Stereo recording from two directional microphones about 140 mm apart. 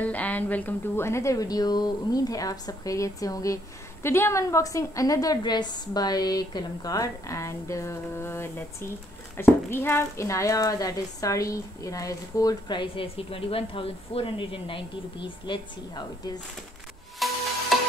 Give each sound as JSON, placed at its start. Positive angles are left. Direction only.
{"t": 0.0, "sound": "speech", "side_deg": 10}
{"t": 17.2, "sound": "music", "side_deg": 0}